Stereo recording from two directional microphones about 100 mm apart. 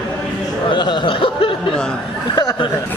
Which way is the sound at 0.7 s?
55° left (ahead or behind).